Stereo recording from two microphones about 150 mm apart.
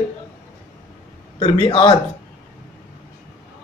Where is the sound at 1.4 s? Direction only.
35° left (ahead or behind).